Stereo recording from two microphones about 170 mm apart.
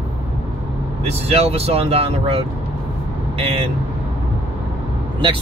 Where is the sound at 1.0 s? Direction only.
35° right (ahead or behind).